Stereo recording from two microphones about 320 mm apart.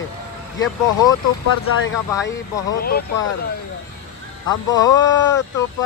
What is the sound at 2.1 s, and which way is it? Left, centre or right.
Speech, centre.